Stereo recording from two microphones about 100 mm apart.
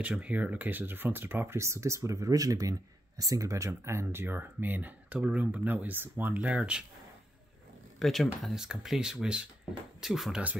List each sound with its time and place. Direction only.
0.0 s speech: 15° right (ahead or behind)
8.0 s speech: centre (ahead or behind)